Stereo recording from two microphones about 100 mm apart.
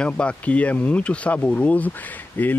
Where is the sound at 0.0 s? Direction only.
10° left (ahead or behind).